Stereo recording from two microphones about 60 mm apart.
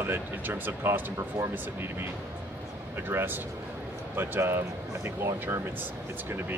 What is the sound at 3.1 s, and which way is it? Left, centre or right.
Speech, right.